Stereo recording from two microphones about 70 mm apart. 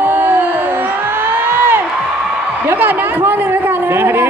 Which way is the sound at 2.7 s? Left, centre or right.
Right.